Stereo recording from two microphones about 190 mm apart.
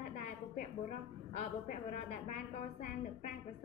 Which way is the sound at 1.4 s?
40° left (ahead or behind).